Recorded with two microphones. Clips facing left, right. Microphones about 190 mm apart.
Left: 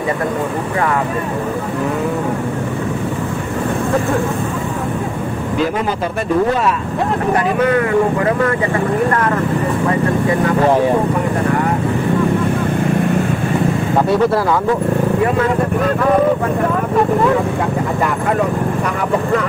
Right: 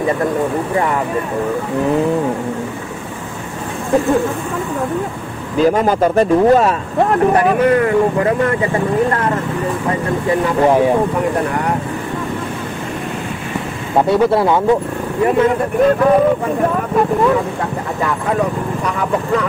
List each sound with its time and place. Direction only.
5.8 s speech: 45° right (ahead or behind)
14.0 s speech: 25° right (ahead or behind)